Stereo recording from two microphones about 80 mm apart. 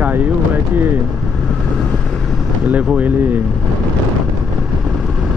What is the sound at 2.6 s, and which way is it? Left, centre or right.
Speech, centre.